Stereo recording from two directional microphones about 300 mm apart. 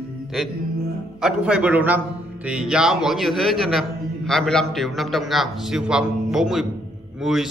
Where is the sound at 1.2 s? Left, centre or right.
Centre.